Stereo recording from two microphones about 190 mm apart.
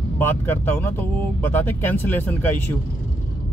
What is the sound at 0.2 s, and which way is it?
Speech, 10° left (ahead or behind).